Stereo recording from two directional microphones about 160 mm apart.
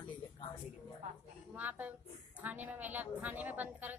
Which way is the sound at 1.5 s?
10° right (ahead or behind).